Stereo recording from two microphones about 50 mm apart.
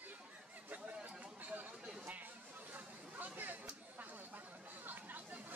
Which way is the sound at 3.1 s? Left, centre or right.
Right.